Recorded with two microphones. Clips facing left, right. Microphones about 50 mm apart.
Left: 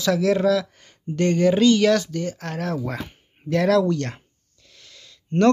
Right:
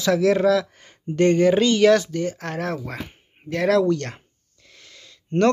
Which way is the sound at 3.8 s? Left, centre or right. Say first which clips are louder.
Right 2 dB; centre.